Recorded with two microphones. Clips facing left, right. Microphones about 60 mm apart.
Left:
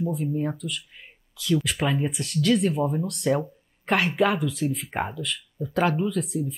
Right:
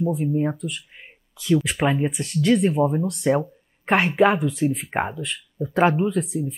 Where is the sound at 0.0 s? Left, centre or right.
Right.